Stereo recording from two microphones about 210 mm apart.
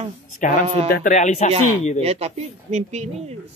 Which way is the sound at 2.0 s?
30° right (ahead or behind).